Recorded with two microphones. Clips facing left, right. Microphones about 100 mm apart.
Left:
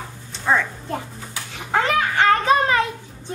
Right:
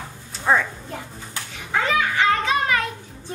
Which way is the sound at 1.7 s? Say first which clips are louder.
Left 2 dB; 50° left (ahead or behind).